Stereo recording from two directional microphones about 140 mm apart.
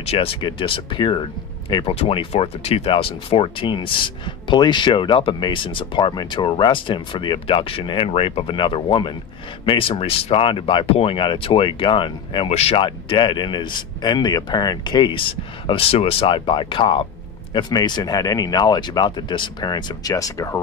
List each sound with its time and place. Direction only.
0.0 s speech: 45° left (ahead or behind); by 20.6 s 20° left (ahead or behind)